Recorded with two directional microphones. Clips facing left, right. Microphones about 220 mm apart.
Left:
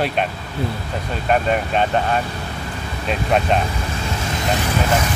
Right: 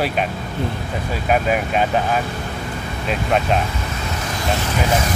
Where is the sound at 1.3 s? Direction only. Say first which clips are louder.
Even; 5° right (ahead or behind).